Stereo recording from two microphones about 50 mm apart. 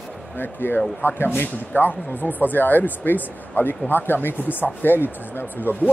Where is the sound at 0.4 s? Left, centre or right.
Left.